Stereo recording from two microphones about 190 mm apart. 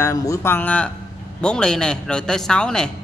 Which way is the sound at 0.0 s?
15° left (ahead or behind).